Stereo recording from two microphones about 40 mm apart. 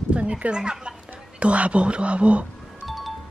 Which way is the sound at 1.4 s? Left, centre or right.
Right.